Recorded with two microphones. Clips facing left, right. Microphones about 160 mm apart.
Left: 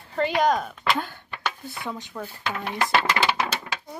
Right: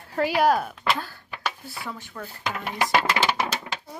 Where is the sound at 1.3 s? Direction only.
5° right (ahead or behind).